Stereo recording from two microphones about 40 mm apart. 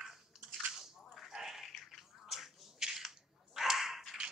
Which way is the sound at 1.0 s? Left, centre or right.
Centre.